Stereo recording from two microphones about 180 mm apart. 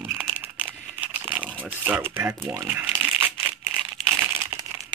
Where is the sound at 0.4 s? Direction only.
10° right (ahead or behind).